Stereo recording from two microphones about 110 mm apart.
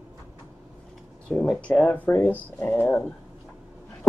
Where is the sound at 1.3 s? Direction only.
10° left (ahead or behind).